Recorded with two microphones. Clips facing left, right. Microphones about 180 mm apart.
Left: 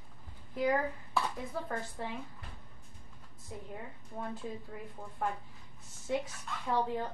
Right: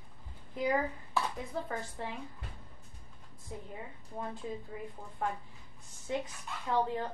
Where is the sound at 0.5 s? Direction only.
Centre (ahead or behind).